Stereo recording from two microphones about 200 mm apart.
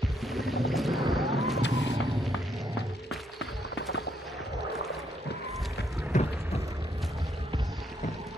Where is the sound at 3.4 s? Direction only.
55° left (ahead or behind).